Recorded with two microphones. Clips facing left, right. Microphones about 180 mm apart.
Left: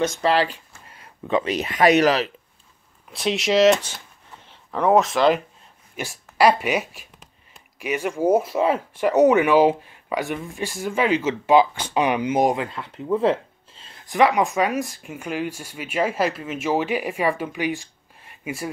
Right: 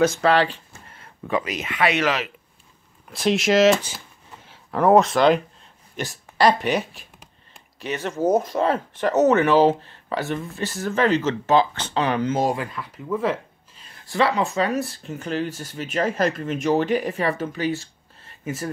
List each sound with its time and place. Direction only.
0.1 s speech: 5° left (ahead or behind)
0.8 s speech: 15° left (ahead or behind); by 2.3 s 35° left (ahead or behind)
3.1 s speech: centre (ahead or behind)